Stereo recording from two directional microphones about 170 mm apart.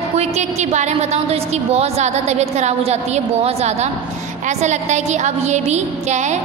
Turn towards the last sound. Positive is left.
turn(degrees=-45)  # may be behind; listen again after turning